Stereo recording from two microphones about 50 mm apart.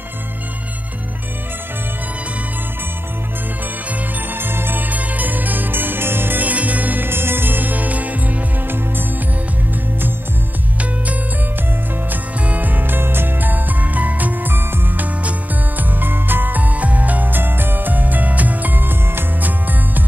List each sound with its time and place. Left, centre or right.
4.3 s music: right
7.1 s music: right
12.1 s music: right